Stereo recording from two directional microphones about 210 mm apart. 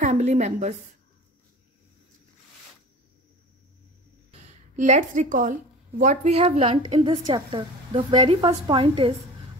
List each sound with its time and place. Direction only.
0.0 s a woman's voice: 35° right (ahead or behind)
4.3 s a woman's voice: 35° right (ahead or behind)